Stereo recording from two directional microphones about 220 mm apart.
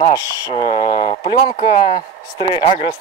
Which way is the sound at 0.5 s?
25° left (ahead or behind).